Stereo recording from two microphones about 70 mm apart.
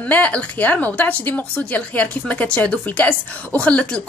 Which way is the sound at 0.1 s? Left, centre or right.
Centre.